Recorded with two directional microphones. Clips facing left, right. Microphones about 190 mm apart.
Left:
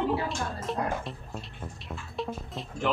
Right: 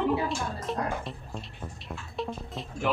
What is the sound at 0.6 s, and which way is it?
Bathtub, centre (ahead or behind).